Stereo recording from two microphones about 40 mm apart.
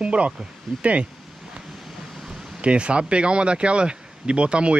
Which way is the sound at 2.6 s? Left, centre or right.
Right.